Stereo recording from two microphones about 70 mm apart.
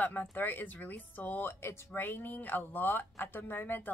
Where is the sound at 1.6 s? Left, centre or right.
Left.